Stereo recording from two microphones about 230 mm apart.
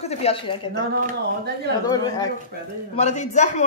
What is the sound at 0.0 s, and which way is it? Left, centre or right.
Speech, left.